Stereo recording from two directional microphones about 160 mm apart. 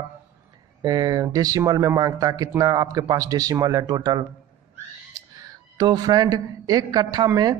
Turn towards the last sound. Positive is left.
turn(degrees=-25)  # may be behind; listen again after turning